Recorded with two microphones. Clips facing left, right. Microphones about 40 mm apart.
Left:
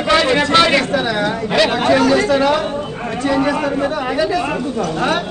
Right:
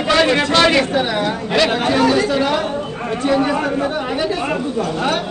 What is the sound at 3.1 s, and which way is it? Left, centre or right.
Speech, right.